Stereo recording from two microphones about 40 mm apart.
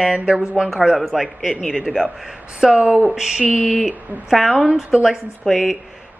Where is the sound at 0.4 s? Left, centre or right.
Centre.